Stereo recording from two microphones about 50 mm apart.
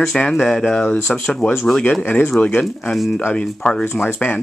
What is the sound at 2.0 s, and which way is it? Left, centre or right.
Speech, left.